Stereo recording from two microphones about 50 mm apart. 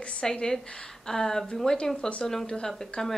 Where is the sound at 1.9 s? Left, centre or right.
Left.